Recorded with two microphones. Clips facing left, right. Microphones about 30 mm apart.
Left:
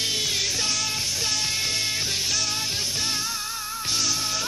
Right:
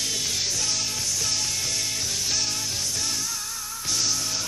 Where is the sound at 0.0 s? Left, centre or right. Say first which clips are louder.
Left 3 dB; left.